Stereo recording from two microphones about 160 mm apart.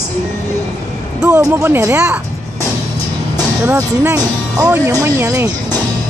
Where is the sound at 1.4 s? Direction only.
15° right (ahead or behind).